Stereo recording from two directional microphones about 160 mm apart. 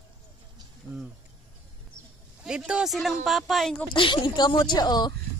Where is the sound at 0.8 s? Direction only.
20° left (ahead or behind).